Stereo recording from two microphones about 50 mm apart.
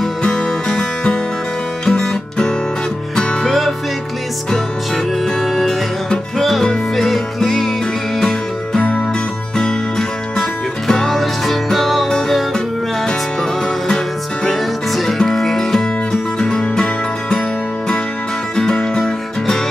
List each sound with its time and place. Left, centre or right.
0.0 s music: centre
3.4 s music: centre
14.9 s music: centre
18.6 s music: centre